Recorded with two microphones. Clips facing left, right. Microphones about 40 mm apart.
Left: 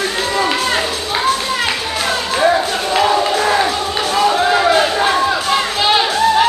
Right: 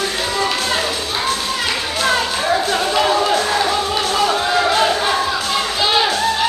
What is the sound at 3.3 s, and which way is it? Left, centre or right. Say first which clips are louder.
Crowd: left 3 dB; centre.